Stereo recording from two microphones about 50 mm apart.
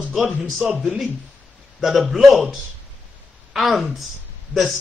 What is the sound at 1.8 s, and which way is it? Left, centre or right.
Speech, centre.